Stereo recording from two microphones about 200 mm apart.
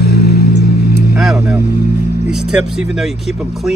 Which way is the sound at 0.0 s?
55° left (ahead or behind).